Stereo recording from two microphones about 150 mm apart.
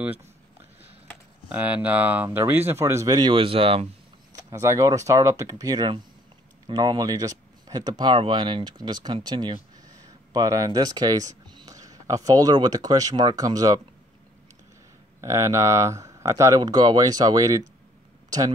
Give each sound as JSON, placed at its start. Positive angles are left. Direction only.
{"t": 0.0, "sound": "speech", "side_deg": -10}
{"t": 1.5, "sound": "speech", "side_deg": -10}
{"t": 4.3, "sound": "speech", "side_deg": -20}
{"t": 15.1, "sound": "speech", "side_deg": -20}